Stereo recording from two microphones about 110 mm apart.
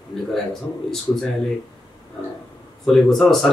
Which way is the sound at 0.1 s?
5° left (ahead or behind).